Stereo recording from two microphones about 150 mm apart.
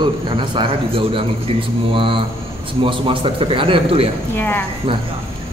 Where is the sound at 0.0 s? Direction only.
30° right (ahead or behind).